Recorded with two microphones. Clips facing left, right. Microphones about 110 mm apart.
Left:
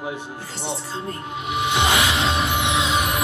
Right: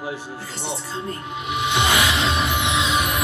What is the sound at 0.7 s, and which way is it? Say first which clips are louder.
Music: right 1 dB; 30° left (ahead or behind).